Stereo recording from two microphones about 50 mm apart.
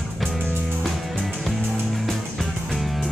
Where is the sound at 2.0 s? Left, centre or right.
Centre.